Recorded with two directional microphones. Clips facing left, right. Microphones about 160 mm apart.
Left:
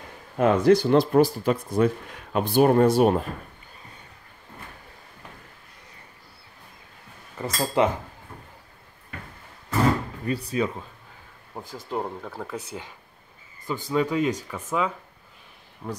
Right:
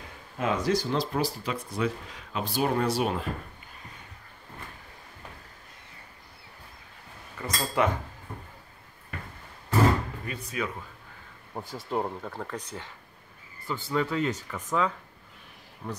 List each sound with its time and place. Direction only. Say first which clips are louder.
0.4 s speech: left 9 dB; 55° left (ahead or behind)
7.4 s speech: left 4 dB; 25° left (ahead or behind)
10.2 s speech: left 7 dB; 35° left (ahead or behind)
11.5 s speech: even; centre (ahead or behind)